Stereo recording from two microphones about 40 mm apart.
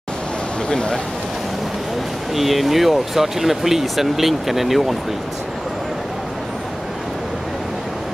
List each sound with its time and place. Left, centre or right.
0.7 s speech: centre
2.3 s speech: centre